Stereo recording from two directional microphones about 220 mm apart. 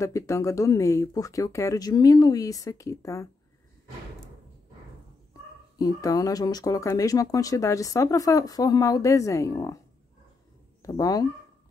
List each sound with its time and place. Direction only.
0.0 s speech: 15° left (ahead or behind)
5.8 s speech: 15° left (ahead or behind)
10.8 s speech: 15° left (ahead or behind)